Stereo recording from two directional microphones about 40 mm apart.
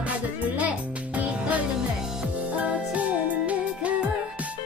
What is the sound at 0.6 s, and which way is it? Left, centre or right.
Music, right.